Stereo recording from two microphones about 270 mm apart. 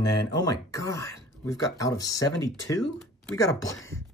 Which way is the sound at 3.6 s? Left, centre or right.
Left.